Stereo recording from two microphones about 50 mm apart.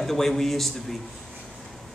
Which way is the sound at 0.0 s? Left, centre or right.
Centre.